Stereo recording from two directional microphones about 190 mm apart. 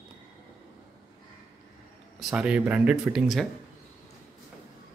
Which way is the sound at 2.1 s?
5° right (ahead or behind).